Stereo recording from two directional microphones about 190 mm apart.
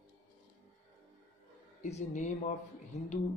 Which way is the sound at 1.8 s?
35° left (ahead or behind).